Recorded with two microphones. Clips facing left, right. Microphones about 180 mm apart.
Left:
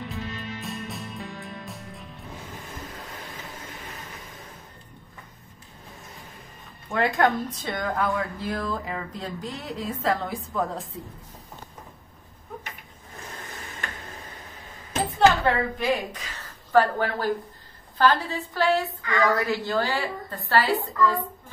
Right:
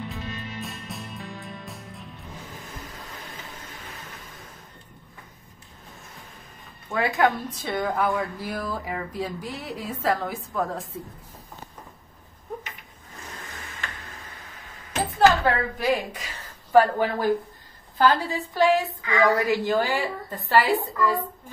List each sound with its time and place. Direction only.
0.1 s music: centre (ahead or behind)
6.9 s a woman's voice: 5° right (ahead or behind)
15.1 s a woman's voice: 5° right (ahead or behind)